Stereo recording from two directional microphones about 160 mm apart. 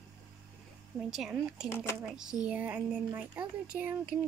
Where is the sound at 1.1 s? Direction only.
5° right (ahead or behind).